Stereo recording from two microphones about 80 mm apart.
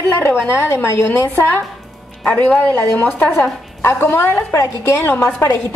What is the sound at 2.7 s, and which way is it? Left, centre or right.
A woman's voice, centre.